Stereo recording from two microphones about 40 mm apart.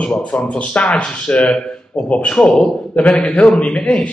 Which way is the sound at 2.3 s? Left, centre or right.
Centre.